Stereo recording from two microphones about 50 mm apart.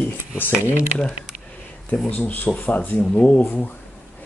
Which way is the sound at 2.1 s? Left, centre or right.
Left.